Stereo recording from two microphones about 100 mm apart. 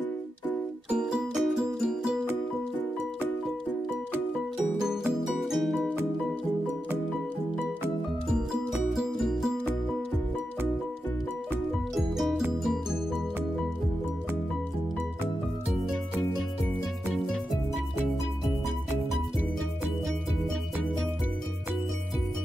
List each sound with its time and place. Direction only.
0.8 s music: 10° right (ahead or behind)
5.5 s music: centre (ahead or behind)
8.9 s music: 5° right (ahead or behind)
11.9 s music: centre (ahead or behind)